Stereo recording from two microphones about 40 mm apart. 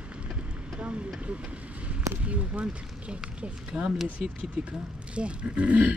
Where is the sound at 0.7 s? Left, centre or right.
Right.